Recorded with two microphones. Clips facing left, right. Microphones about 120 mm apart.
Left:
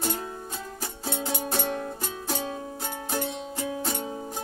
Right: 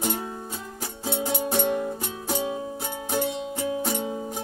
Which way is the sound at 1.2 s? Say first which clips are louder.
Right 5 dB; 10° right (ahead or behind).